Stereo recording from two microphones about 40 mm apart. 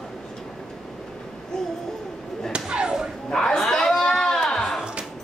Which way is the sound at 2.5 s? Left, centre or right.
Right.